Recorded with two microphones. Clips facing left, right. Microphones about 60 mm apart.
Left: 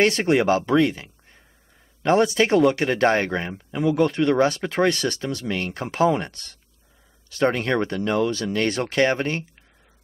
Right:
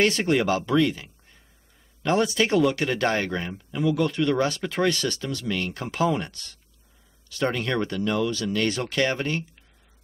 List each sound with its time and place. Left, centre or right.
0.0 s speech: left
4.0 s speech: left